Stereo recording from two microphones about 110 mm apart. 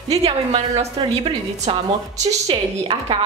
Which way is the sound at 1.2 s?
65° right (ahead or behind).